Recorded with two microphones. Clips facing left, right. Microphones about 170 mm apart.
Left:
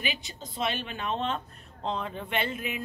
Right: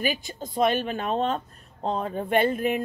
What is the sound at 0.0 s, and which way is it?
A woman's voice, 45° right (ahead or behind).